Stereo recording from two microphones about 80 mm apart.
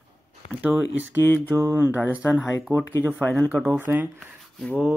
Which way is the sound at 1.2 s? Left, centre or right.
Left.